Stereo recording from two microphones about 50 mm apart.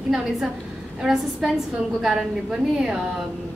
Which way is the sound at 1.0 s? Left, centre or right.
Centre.